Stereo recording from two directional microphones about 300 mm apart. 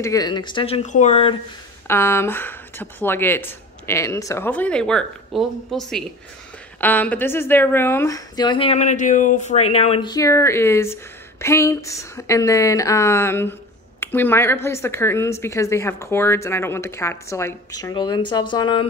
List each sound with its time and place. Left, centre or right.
0.0 s a woman's voice: centre
1.9 s a woman's voice: centre